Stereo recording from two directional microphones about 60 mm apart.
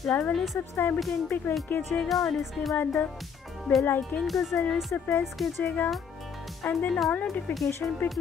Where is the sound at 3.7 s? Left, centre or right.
Left.